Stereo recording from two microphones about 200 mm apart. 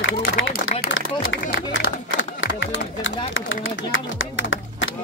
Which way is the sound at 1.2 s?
70° left (ahead or behind).